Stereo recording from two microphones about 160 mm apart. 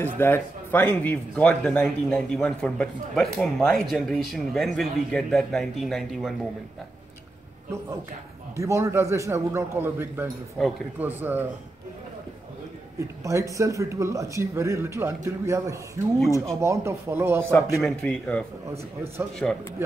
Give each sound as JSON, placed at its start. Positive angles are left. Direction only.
{"t": 0.0, "sound": "speech", "side_deg": 15}
{"t": 8.5, "sound": "a man's voice", "side_deg": -20}
{"t": 10.6, "sound": "speech", "side_deg": 0}
{"t": 11.0, "sound": "a man's voice", "side_deg": -10}
{"t": 13.2, "sound": "a man's voice", "side_deg": -20}
{"t": 17.8, "sound": "speech", "side_deg": 5}
{"t": 19.4, "sound": "speech", "side_deg": 10}